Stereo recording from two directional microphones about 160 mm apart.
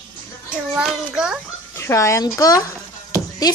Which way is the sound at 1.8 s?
15° left (ahead or behind).